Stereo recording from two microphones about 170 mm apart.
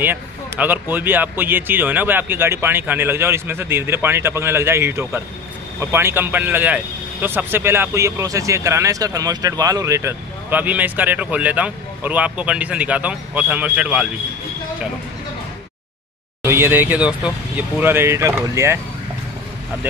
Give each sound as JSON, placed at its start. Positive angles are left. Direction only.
{"t": 0.0, "sound": "speech", "side_deg": -10}
{"t": 16.4, "sound": "speech", "side_deg": -15}